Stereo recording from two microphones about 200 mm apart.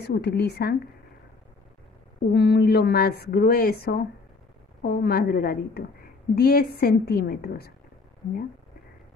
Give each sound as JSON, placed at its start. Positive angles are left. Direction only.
{"t": 0.0, "sound": "speech", "side_deg": 55}
{"t": 2.3, "sound": "speech", "side_deg": 55}